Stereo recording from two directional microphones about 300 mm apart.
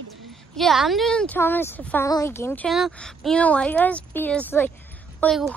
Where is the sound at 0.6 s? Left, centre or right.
Centre.